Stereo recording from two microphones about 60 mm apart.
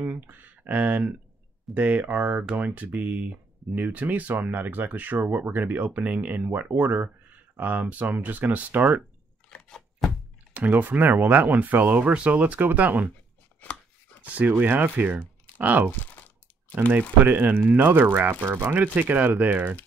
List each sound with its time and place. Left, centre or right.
0.0 s speech: right
9.5 s a sound: centre
10.5 s speech: right
14.2 s speech: right
15.9 s crumpling: left
17.2 s speech: right